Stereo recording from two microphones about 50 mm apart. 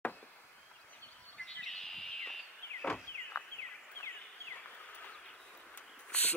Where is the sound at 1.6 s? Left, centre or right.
Centre.